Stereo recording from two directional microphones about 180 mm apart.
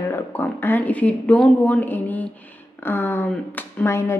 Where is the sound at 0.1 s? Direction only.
10° left (ahead or behind).